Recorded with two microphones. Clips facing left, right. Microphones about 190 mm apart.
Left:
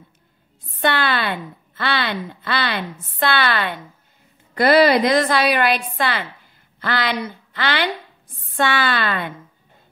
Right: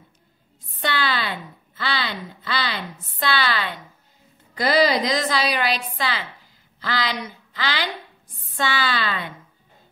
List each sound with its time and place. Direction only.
0.7 s a woman's voice: 55° left (ahead or behind)